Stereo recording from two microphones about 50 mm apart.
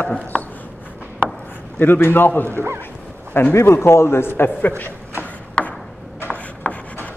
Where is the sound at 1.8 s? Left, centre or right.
Left.